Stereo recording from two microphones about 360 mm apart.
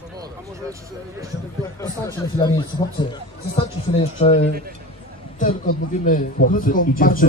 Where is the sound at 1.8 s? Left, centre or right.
Centre.